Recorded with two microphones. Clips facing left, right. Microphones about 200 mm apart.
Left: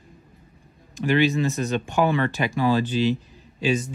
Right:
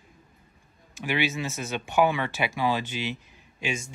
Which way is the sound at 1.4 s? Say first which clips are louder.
Left 8 dB; 10° right (ahead or behind).